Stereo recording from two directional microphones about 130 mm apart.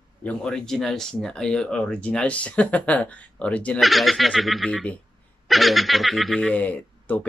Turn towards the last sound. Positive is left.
turn(degrees=10)  # may be behind; listen again after turning